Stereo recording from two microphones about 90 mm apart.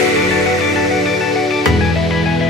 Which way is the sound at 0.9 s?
Centre (ahead or behind).